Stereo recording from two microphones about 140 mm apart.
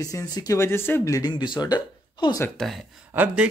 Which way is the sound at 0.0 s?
25° left (ahead or behind).